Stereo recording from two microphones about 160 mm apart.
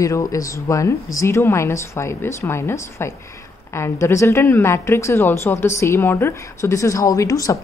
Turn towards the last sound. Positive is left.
turn(degrees=20)  # may be behind; listen again after turning